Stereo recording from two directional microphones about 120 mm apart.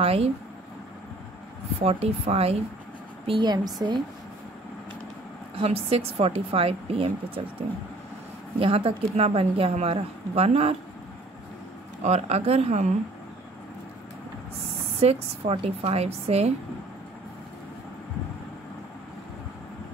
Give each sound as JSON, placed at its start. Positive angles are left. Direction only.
{"t": 0.0, "sound": "speech", "side_deg": -55}
{"t": 1.8, "sound": "speech", "side_deg": -60}
{"t": 3.3, "sound": "a woman's voice", "side_deg": -35}
{"t": 5.6, "sound": "a woman's voice", "side_deg": -55}
{"t": 8.5, "sound": "speech", "side_deg": -50}
{"t": 12.0, "sound": "speech", "side_deg": -65}
{"t": 15.0, "sound": "speech", "side_deg": -55}